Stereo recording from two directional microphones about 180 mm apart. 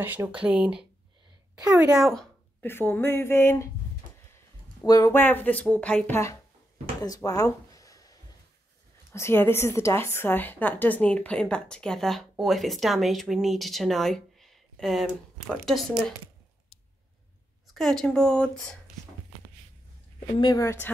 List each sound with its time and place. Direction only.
0.0 s a woman's voice: 10° right (ahead or behind)
1.7 s a woman's voice: 20° right (ahead or behind)
2.0 s a woman's voice: centre (ahead or behind)
2.6 s speech: 10° left (ahead or behind)
4.8 s speech: 20° left (ahead or behind)
9.1 s a woman's voice: 15° left (ahead or behind)
17.7 s a woman's voice: 5° left (ahead or behind)
20.3 s a woman's voice: 20° left (ahead or behind)